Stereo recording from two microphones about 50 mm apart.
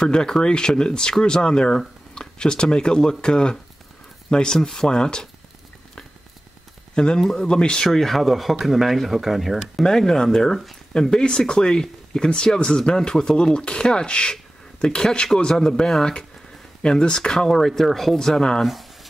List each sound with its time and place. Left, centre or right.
0.0 s speech: centre
7.0 s speech: centre
9.8 s speech: centre
10.9 s speech: centre